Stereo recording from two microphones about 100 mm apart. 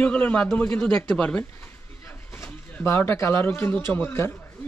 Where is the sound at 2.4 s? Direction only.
25° left (ahead or behind).